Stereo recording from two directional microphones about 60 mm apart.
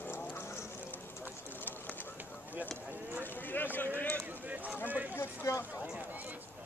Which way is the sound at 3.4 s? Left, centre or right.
Left.